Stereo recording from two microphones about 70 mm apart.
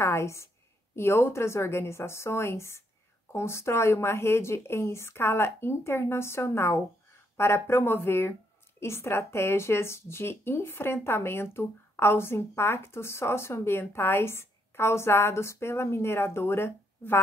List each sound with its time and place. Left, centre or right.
0.0 s a woman's voice: left